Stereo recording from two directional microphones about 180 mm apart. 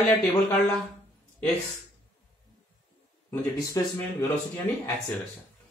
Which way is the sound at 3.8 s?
20° left (ahead or behind).